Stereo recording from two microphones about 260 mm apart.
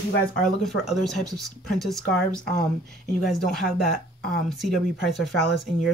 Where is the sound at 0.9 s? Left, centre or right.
Centre.